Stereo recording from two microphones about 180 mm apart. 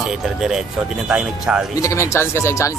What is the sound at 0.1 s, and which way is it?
Speech, 5° right (ahead or behind).